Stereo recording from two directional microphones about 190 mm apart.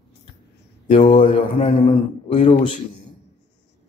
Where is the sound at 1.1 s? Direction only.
40° left (ahead or behind).